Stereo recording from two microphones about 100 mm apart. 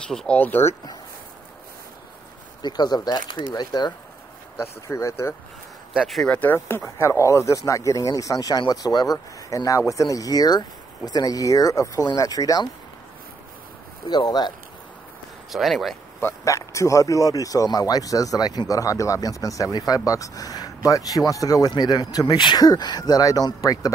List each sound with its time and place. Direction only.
0.1 s speech: 5° left (ahead or behind)
0.4 s speech: 20° left (ahead or behind)
2.6 s speech: 45° left (ahead or behind)
4.6 s speech: 30° left (ahead or behind)
5.9 s speech: centre (ahead or behind)
6.3 s speech: 20° left (ahead or behind); by 12.6 s 40° left (ahead or behind)
14.0 s speech: 45° left (ahead or behind)
15.5 s speech: centre (ahead or behind)
16.2 s speech: 25° left (ahead or behind)